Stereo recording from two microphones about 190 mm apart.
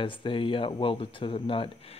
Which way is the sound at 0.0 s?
25° left (ahead or behind).